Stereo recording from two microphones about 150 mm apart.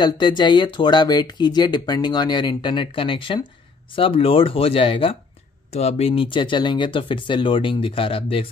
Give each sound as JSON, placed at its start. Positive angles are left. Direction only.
{"t": 0.0, "sound": "speech", "side_deg": 30}